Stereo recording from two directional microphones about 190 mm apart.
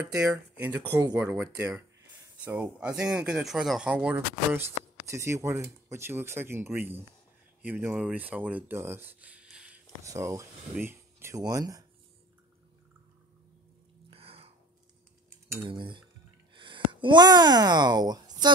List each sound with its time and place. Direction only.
0.1 s speech: 15° right (ahead or behind)
10.0 s speech: 15° right (ahead or behind)
14.1 s a sound: 30° right (ahead or behind)
15.6 s typing: 25° right (ahead or behind)
16.5 s speech: 25° right (ahead or behind)